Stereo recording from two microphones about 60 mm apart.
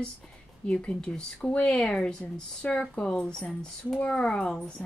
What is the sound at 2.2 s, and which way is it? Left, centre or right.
A woman's voice, left.